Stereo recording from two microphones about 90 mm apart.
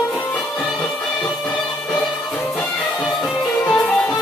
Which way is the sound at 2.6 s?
10° left (ahead or behind).